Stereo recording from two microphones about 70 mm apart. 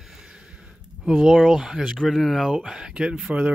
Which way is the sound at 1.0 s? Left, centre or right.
Centre.